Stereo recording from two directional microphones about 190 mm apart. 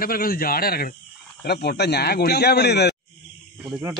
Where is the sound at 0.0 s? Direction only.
50° left (ahead or behind).